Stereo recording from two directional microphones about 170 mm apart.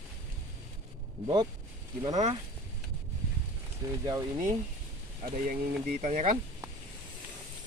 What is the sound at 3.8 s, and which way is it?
Speech, 20° right (ahead or behind).